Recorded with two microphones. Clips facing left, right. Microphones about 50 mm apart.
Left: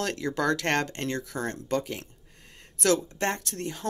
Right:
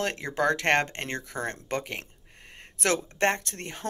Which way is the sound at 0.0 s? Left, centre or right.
Right.